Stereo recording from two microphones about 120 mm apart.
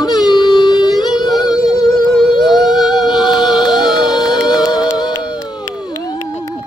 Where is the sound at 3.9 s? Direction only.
35° left (ahead or behind).